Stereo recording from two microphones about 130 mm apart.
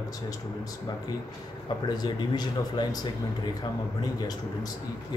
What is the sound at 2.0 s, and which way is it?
Speech, 35° left (ahead or behind).